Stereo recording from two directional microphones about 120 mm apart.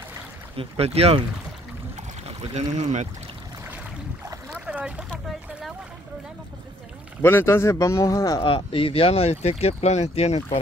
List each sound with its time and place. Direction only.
0.6 s speech: 60° right (ahead or behind)
2.2 s speech: 70° right (ahead or behind)
4.6 s boat: 10° right (ahead or behind)
7.2 s speech: 20° left (ahead or behind)
8.5 s speech: 50° left (ahead or behind)